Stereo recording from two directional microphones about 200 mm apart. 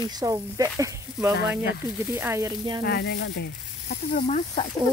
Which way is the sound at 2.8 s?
50° left (ahead or behind).